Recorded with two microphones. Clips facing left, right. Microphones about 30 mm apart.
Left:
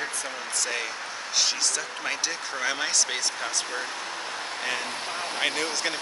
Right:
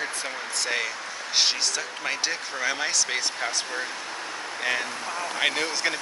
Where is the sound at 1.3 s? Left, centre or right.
Right.